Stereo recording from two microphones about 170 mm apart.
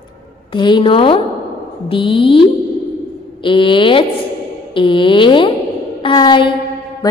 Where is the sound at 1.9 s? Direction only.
30° left (ahead or behind).